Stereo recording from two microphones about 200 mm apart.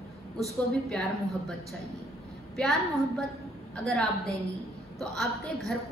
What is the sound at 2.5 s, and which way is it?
A woman's voice, centre (ahead or behind).